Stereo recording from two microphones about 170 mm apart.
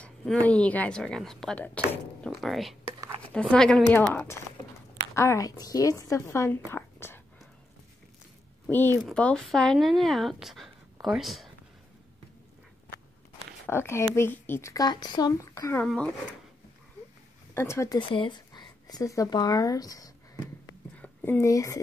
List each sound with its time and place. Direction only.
0.0 s speech: 5° left (ahead or behind)
8.6 s speech: 15° left (ahead or behind)
13.7 s speech: 15° left (ahead or behind)
15.8 s speech: 5° left (ahead or behind)
17.6 s a woman's voice: 15° left (ahead or behind)